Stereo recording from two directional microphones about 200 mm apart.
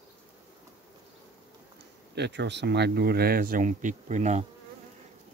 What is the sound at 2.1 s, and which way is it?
Speech, 60° right (ahead or behind).